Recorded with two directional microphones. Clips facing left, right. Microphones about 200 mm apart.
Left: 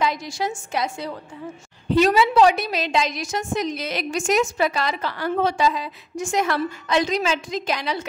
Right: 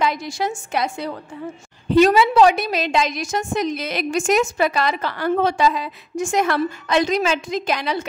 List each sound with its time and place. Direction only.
0.0 s a woman's voice: 60° right (ahead or behind)